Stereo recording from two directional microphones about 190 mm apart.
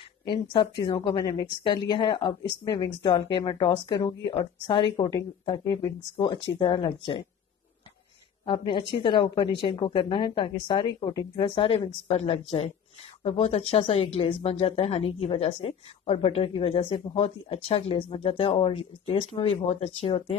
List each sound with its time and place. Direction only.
0.2 s speech: 25° left (ahead or behind)
8.5 s a woman's voice: 25° left (ahead or behind)